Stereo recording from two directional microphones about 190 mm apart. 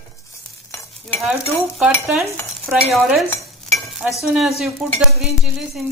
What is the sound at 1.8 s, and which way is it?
Stir, centre (ahead or behind).